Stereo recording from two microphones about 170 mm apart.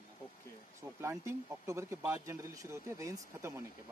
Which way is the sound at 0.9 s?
15° right (ahead or behind).